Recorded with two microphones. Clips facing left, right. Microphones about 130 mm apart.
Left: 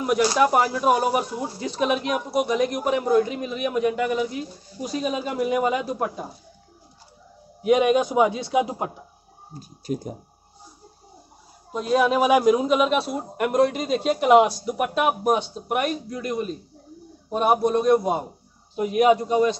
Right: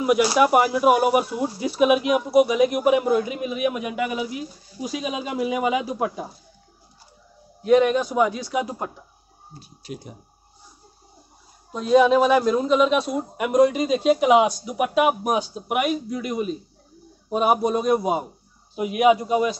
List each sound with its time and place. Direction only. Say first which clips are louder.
0.0 s speech: right 2 dB; 10° right (ahead or behind)
7.6 s a man's voice: right 1 dB; 15° left (ahead or behind)
9.5 s speech: left 7 dB; 45° left (ahead or behind)
11.7 s a man's voice: right 4 dB; 5° left (ahead or behind)